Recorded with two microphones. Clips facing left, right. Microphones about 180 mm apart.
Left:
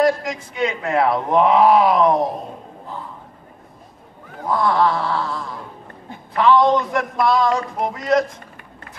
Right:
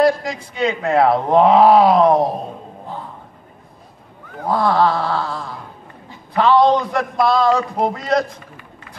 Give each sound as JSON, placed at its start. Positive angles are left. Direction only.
{"t": 0.0, "sound": "speech", "side_deg": -35}
{"t": 4.5, "sound": "speech", "side_deg": -35}